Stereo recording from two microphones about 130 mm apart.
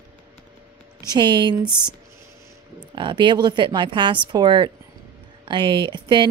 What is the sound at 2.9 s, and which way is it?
A woman's voice, 40° right (ahead or behind).